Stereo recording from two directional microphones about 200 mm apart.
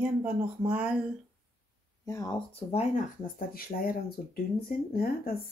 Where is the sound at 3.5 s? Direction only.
50° left (ahead or behind).